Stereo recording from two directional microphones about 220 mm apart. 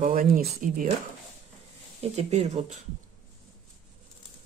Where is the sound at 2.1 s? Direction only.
30° right (ahead or behind).